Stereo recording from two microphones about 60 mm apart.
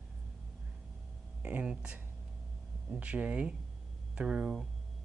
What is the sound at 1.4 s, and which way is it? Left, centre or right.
Speech, centre.